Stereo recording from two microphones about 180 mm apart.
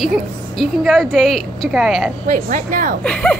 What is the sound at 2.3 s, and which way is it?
Speech, 45° right (ahead or behind).